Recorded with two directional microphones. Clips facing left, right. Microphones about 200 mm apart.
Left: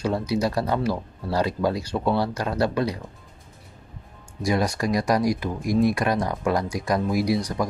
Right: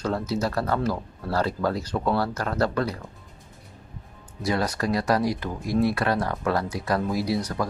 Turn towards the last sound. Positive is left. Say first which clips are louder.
# left 3 dB
turn(degrees=15)  # may be behind; listen again after turning